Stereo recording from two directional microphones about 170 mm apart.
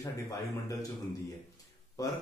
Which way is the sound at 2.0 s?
20° left (ahead or behind).